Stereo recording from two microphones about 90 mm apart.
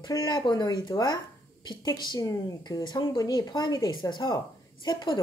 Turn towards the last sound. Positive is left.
turn(degrees=55)  # may be behind; listen again after turning